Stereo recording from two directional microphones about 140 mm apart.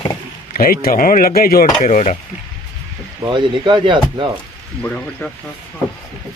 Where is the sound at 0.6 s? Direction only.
90° left.